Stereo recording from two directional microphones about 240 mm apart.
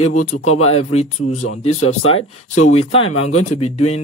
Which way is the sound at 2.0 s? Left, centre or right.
Left.